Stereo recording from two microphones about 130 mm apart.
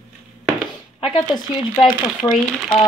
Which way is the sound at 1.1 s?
35° left (ahead or behind).